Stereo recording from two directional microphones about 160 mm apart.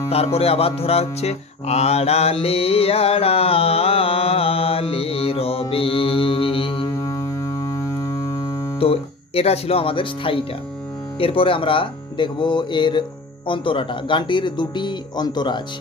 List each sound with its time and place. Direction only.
0.1 s mantra: 40° left (ahead or behind)
7.1 s music: 20° left (ahead or behind)
8.7 s speech: 35° left (ahead or behind)
11.1 s mantra: 35° left (ahead or behind)
13.5 s speech: 30° left (ahead or behind)